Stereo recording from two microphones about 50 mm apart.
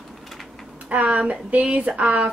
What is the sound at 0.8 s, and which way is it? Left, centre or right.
Speech, right.